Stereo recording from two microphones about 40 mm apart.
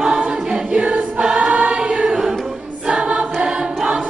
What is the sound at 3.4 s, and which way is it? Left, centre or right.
Choir, right.